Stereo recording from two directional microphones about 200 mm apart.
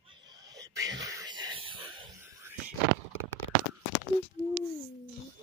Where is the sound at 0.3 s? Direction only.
20° right (ahead or behind).